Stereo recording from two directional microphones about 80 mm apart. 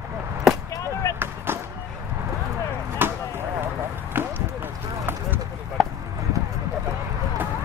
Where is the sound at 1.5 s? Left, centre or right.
Right.